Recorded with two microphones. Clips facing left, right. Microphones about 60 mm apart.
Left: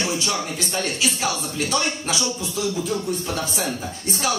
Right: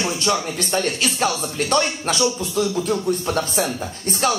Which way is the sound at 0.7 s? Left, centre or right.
Right.